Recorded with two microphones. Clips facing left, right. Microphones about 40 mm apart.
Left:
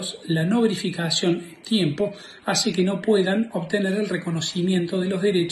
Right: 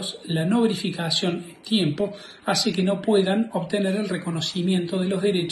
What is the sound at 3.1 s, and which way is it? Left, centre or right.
Speech, right.